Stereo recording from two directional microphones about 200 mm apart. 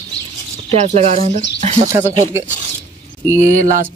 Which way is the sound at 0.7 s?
35° right (ahead or behind).